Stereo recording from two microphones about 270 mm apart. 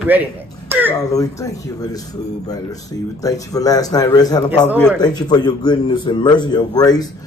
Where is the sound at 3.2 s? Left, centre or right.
Centre.